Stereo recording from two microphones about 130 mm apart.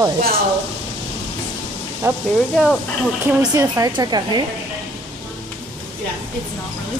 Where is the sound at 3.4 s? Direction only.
25° right (ahead or behind).